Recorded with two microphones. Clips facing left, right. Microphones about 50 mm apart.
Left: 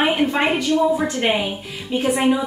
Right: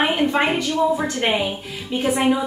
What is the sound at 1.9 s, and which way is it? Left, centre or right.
Speech, centre.